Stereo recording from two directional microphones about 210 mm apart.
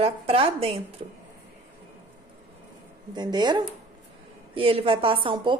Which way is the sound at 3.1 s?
20° right (ahead or behind).